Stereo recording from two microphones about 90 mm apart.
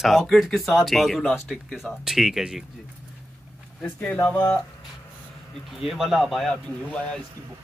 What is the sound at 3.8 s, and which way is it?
Speech, 15° left (ahead or behind).